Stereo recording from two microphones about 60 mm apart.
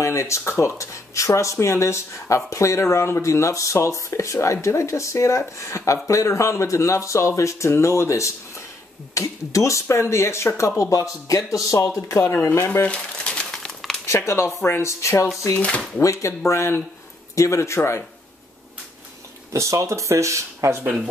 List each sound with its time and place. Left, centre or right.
0.0 s a sound: left
0.5 s speech: left
10.8 s speech: left
12.8 s crumpling: centre
13.7 s a sound: centre
14.0 s speech: left
19.5 s speech: right